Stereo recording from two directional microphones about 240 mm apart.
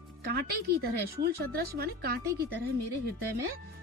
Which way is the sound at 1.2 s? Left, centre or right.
Right.